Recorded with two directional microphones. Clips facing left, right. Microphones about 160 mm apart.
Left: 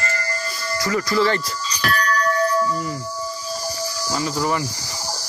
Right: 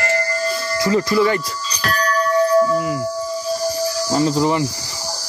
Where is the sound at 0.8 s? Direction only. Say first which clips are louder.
Right 5 dB; 25° right (ahead or behind).